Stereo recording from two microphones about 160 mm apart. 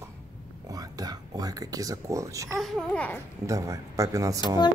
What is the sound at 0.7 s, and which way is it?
Speech, 25° right (ahead or behind).